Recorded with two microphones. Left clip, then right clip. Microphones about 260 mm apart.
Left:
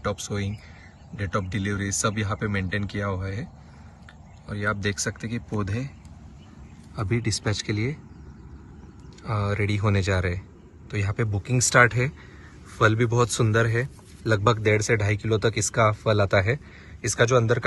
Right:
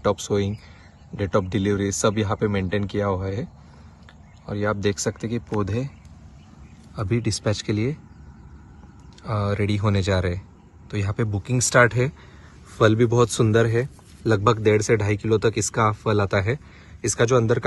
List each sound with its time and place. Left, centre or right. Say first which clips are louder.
0.0 s a man's voice: right 7 dB; centre
4.5 s a man's voice: right 3 dB; centre
7.0 s a man's voice: right 2 dB; centre
9.2 s a man's voice: right 2 dB; centre